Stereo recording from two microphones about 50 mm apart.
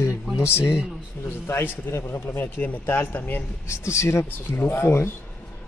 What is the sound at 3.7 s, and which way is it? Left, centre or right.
Speech, left.